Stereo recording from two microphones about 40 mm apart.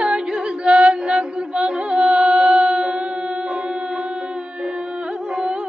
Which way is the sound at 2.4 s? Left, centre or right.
Centre.